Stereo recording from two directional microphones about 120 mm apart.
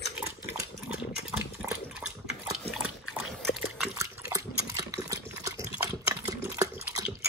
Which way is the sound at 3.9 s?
25° right (ahead or behind).